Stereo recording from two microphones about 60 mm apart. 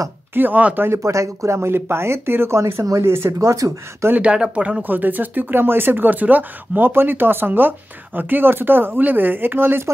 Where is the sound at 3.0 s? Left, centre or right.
Right.